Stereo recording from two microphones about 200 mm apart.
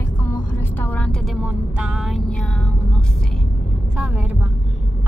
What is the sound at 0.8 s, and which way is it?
Speech, 10° left (ahead or behind).